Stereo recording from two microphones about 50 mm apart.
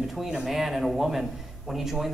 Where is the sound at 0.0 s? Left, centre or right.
Centre.